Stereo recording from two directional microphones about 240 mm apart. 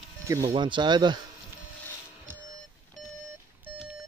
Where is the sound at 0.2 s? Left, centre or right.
Centre.